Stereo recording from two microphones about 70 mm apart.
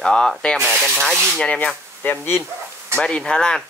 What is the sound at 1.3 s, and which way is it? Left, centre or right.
Speech, centre.